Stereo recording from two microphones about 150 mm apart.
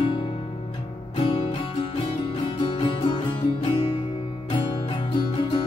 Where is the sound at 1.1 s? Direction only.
40° left (ahead or behind).